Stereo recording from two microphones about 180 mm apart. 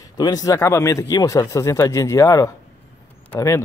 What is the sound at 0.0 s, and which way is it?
Speech, 20° left (ahead or behind).